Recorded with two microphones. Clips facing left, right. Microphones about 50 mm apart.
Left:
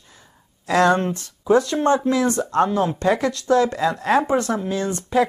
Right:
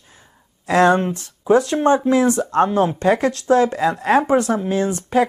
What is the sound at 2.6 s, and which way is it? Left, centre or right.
Speech, right.